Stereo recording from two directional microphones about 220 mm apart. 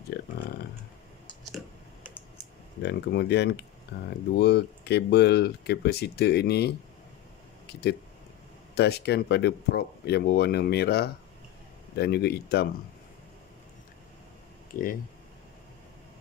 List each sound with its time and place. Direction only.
2.8 s speech: 50° left (ahead or behind)
8.7 s speech: 50° left (ahead or behind)
14.7 s speech: 40° left (ahead or behind)